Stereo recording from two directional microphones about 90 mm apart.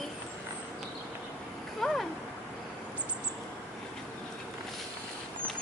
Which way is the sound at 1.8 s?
5° left (ahead or behind).